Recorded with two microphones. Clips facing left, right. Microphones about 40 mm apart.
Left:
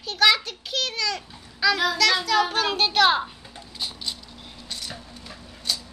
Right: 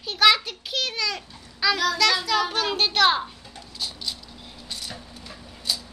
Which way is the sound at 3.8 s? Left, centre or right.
Centre.